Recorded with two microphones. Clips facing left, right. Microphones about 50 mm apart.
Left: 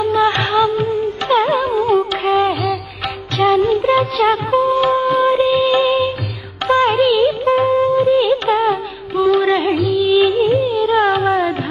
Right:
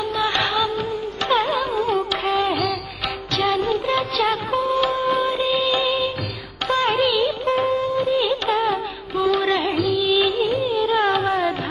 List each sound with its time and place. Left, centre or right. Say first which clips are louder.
0.1 s music: left 4 dB; left
0.6 s music: left 7 dB; centre
6.9 s music of bollywood: left 6 dB; centre
9.7 s music: left 5 dB; centre